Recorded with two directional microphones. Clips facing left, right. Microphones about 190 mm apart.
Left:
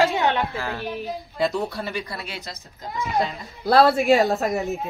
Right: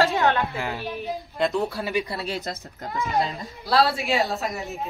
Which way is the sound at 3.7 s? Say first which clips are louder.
Left 6 dB; 50° left (ahead or behind).